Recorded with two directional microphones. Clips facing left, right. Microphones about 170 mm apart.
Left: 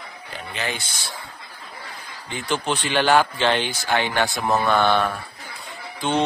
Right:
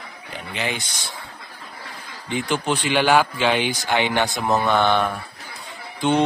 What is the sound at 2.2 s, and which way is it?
Speech, 15° right (ahead or behind).